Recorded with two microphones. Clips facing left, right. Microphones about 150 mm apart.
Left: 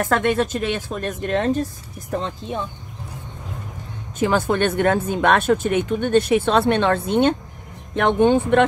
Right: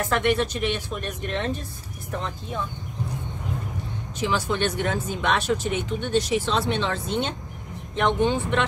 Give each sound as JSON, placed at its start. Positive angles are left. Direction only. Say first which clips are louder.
{"t": 0.0, "sound": "speech", "louder": "left 3 dB", "side_deg": 45}
{"t": 4.2, "sound": "speech", "louder": "left 6 dB", "side_deg": 50}